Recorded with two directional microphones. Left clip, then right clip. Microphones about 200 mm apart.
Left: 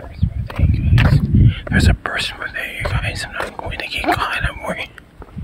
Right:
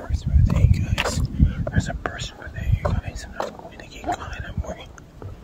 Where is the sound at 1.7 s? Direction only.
10° left (ahead or behind).